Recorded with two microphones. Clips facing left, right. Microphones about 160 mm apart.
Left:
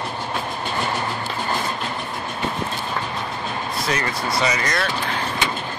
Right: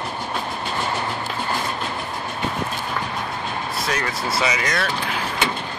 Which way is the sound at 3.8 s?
Centre (ahead or behind).